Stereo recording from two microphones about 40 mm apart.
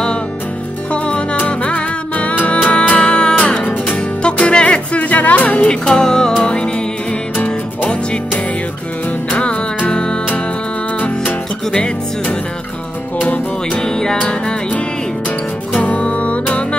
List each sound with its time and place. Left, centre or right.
0.9 s music: left
5.7 s music: centre
9.3 s music: left
11.7 s music: left
13.7 s music: centre
15.8 s music: left